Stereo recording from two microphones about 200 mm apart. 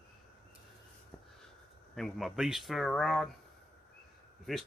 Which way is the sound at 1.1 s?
10° left (ahead or behind).